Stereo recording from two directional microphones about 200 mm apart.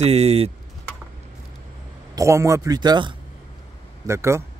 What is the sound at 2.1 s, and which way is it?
A man's voice, 15° right (ahead or behind).